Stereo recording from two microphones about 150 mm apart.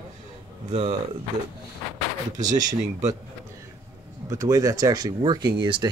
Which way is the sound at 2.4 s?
25° right (ahead or behind).